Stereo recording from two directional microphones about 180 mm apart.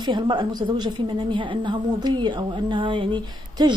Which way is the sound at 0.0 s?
25° right (ahead or behind).